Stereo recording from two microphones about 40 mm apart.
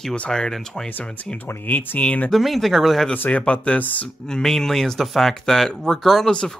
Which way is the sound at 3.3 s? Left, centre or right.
Left.